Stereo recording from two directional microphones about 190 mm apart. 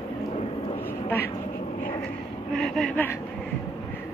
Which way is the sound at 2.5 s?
5° left (ahead or behind).